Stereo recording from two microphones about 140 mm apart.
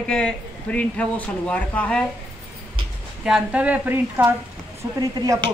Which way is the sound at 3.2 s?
5° right (ahead or behind).